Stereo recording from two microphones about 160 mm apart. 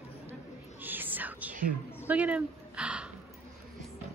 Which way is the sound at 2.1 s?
10° right (ahead or behind).